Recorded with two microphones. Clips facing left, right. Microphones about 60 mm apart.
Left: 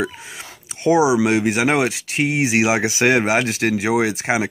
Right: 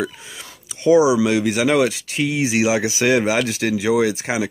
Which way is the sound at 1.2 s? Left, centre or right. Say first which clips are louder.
Even; left.